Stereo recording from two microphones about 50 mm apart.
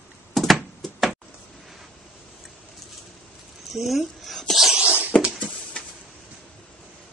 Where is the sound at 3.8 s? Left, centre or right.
Centre.